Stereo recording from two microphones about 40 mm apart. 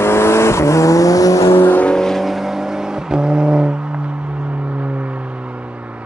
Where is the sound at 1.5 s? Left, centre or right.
Left.